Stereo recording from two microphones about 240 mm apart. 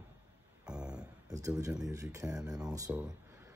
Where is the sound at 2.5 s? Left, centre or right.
Centre.